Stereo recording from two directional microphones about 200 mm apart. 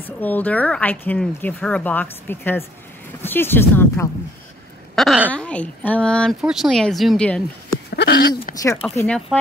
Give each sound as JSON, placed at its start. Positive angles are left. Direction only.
{"t": 0.2, "sound": "speech", "side_deg": 10}
{"t": 4.9, "sound": "speech", "side_deg": 0}
{"t": 7.9, "sound": "a sound", "side_deg": 55}
{"t": 8.8, "sound": "speech", "side_deg": 5}